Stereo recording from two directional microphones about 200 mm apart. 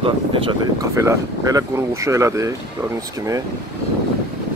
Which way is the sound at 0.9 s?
15° right (ahead or behind).